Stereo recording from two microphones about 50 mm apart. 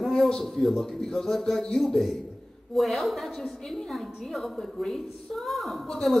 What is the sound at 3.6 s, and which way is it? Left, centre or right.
A woman's voice, centre.